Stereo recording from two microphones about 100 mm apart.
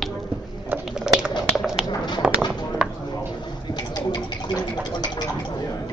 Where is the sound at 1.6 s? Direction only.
5° right (ahead or behind).